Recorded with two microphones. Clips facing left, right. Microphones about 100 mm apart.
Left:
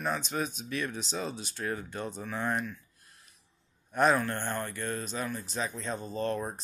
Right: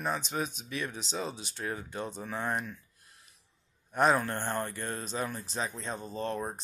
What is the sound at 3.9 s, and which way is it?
A man's voice, 20° right (ahead or behind).